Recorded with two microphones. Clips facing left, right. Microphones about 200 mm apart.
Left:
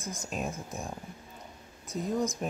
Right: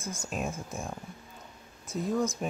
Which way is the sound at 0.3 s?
Centre (ahead or behind).